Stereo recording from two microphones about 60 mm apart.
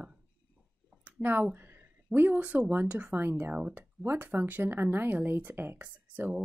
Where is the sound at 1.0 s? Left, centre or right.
Right.